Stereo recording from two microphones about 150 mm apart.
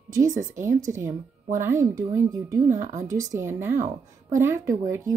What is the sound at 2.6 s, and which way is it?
Speech, 55° right (ahead or behind).